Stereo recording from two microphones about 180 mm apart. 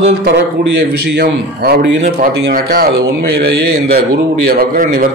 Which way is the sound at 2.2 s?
60° right (ahead or behind).